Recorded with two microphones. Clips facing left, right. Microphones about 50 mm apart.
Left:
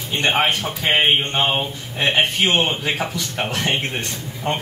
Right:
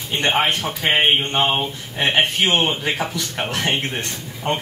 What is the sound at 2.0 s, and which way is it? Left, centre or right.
Speech, right.